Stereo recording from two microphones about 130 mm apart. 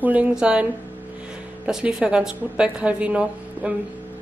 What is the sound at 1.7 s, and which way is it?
Speech, 5° right (ahead or behind).